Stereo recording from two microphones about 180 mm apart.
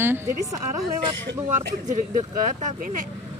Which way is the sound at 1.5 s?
40° right (ahead or behind).